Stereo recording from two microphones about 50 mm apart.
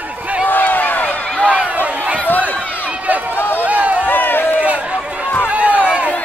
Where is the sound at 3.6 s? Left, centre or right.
Right.